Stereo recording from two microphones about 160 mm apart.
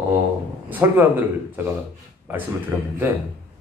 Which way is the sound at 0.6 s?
10° right (ahead or behind).